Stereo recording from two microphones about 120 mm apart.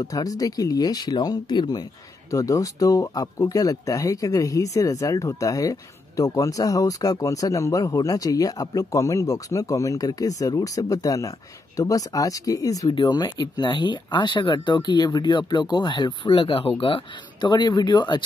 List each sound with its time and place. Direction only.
0.0 s speech: 30° left (ahead or behind)